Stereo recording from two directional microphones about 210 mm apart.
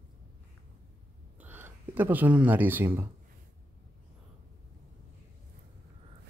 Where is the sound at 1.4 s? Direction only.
10° right (ahead or behind).